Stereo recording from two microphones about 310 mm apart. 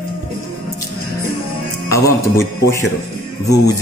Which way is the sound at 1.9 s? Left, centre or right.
Centre.